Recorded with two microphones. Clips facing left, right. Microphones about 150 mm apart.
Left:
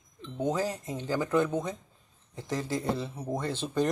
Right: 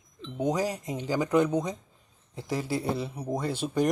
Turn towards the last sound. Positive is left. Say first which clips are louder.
# right 2 dB
turn(degrees=-10)  # may be behind; listen again after turning